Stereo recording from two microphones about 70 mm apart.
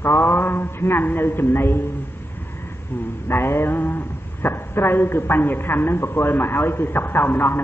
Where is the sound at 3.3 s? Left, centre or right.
Left.